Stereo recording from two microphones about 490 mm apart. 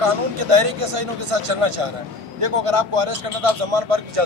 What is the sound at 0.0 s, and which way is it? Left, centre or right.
Speech, right.